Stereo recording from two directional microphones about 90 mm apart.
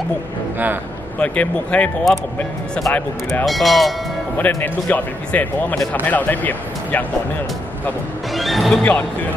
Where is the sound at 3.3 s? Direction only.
Centre (ahead or behind).